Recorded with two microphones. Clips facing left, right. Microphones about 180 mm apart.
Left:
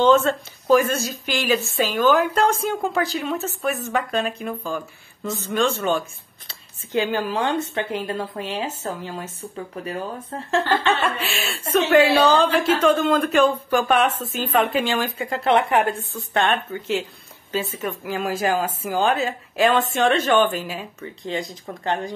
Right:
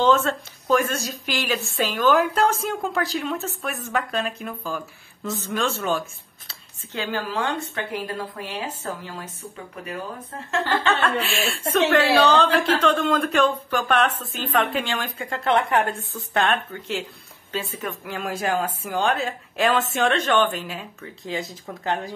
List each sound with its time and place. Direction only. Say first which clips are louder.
0.0 s a woman's voice: left 3 dB; centre (ahead or behind)
6.9 s speech: left 6 dB; 15° left (ahead or behind); by 9.9 s 35° left (ahead or behind)
10.9 s a woman's voice: even; 10° left (ahead or behind)